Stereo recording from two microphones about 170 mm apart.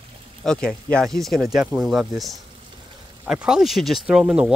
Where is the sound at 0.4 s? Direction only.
5° left (ahead or behind).